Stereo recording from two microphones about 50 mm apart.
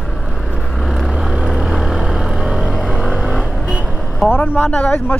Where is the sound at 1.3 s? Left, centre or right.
Centre.